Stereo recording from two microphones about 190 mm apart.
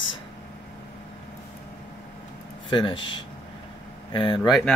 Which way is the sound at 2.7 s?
25° left (ahead or behind).